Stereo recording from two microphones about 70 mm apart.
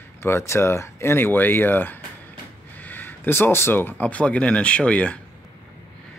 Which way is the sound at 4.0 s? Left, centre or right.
Centre.